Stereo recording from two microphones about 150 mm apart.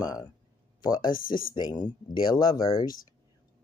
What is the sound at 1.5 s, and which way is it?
Speech, 30° left (ahead or behind).